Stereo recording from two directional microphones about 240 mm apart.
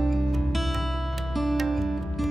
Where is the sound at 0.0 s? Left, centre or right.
Centre.